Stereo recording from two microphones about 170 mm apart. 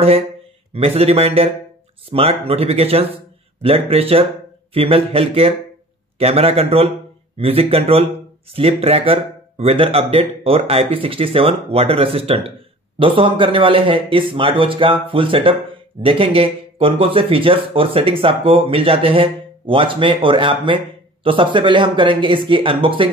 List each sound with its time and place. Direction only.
0.7 s speech: 35° right (ahead or behind)